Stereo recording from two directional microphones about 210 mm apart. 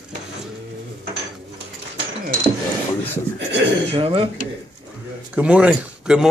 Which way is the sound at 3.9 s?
25° right (ahead or behind).